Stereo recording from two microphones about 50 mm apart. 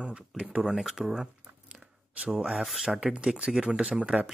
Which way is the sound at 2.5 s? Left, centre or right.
Centre.